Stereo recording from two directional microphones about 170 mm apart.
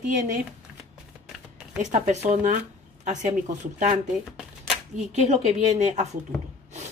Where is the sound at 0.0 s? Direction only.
45° right (ahead or behind).